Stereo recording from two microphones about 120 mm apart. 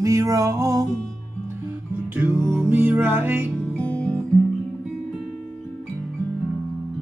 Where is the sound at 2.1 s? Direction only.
15° right (ahead or behind).